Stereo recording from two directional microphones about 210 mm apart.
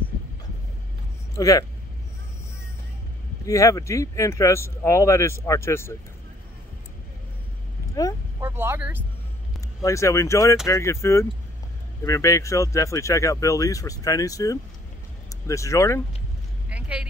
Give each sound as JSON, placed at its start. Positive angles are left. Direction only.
{"t": 1.3, "sound": "speech", "side_deg": 15}
{"t": 3.4, "sound": "speech", "side_deg": 15}
{"t": 8.4, "sound": "speech", "side_deg": -10}
{"t": 9.8, "sound": "speech", "side_deg": 15}
{"t": 16.6, "sound": "vehicle", "side_deg": -5}